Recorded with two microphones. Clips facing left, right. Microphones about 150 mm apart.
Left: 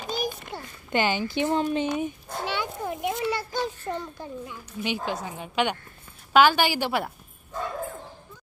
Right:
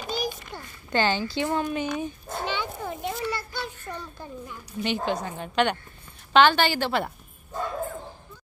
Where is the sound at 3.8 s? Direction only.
25° left (ahead or behind).